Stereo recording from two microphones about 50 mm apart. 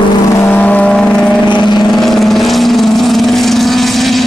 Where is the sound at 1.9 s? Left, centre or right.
Centre.